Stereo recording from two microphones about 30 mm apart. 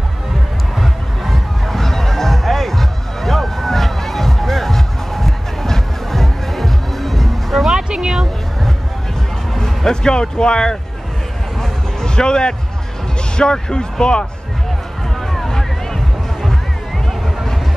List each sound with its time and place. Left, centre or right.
0.7 s music: centre
7.7 s a sound: right
9.6 s music: centre
10.1 s speech: left
12.2 s speech: left
15.4 s music: centre